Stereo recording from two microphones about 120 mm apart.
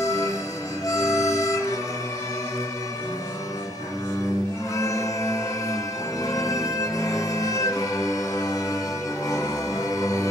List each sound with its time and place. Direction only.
0.0 s music: 30° left (ahead or behind)
4.7 s music: 25° left (ahead or behind)